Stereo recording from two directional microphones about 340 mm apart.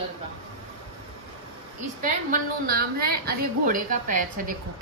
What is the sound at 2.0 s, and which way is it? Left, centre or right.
A woman's voice, right.